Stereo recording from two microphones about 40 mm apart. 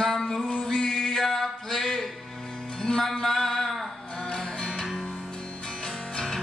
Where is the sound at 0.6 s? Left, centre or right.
Centre.